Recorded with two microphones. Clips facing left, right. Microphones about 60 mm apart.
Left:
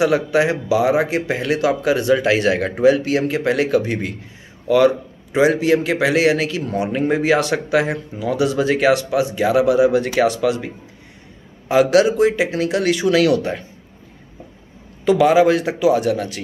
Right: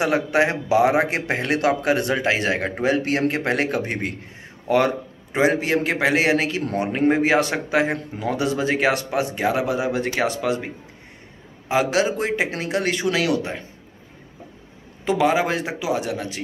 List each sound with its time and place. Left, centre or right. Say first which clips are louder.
0.0 s a man's voice: left 3 dB; right
2.1 s a man's voice: left 5 dB; right
2.8 s a man's voice: left 6 dB; right
5.3 s a man's voice: left 4 dB; right
11.7 s a man's voice: left 6 dB; right
12.1 s a man's voice: left 7 dB; right
13.1 s a man's voice: left 6 dB; right
15.0 s a man's voice: left 6 dB; right